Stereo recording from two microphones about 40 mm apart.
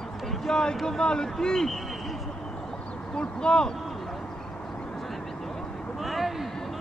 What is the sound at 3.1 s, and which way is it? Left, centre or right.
Speech, left.